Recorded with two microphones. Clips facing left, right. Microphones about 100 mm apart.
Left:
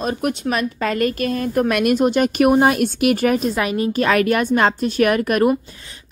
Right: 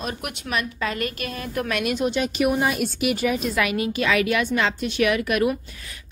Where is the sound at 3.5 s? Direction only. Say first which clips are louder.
Left 4 dB; 35° left (ahead or behind).